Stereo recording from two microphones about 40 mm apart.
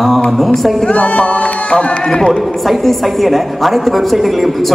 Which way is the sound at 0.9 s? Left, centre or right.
Left.